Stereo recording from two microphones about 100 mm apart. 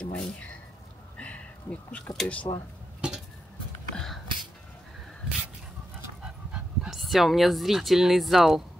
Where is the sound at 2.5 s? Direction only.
50° left (ahead or behind).